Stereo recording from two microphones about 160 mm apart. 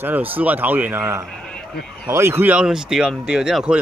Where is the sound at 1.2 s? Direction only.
5° left (ahead or behind).